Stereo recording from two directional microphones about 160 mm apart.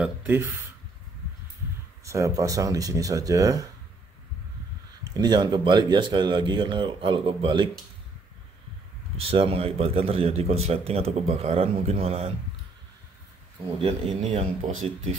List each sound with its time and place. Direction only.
0.0 s speech: 15° right (ahead or behind)
2.0 s speech: 20° right (ahead or behind)
5.1 s speech: 25° right (ahead or behind)
9.2 s a man's voice: 35° right (ahead or behind)
14.3 s a man's voice: 40° right (ahead or behind)